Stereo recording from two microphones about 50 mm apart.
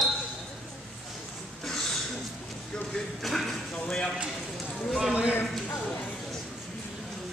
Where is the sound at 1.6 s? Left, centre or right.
Centre.